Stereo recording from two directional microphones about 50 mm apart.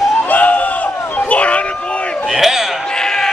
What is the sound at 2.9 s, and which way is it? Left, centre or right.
Sheep, centre.